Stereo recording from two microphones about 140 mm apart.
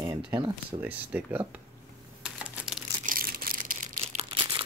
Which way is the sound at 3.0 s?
85° right.